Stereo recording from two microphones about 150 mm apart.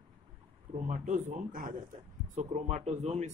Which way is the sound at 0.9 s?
55° right (ahead or behind).